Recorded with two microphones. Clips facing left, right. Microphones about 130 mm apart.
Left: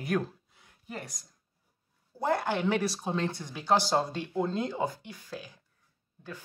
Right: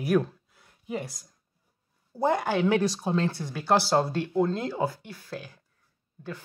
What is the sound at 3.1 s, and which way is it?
Speech, 20° left (ahead or behind).